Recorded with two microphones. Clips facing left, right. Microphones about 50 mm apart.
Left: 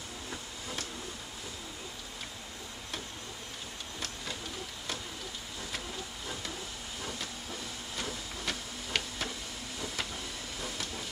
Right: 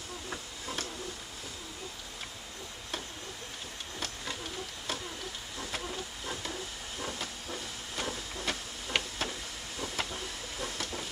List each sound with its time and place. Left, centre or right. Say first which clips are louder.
7.0 s hiss: right 3 dB; centre
7.9 s printer: right 3 dB; centre
9.8 s vehicle: right 2 dB; centre
10.6 s train: right 3 dB; centre